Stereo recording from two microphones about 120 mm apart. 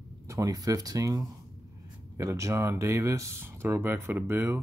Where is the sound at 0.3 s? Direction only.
30° right (ahead or behind).